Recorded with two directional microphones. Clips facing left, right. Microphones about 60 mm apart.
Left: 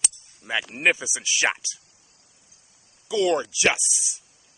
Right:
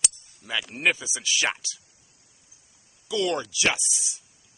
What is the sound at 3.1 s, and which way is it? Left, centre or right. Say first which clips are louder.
Speech: left 4 dB; centre.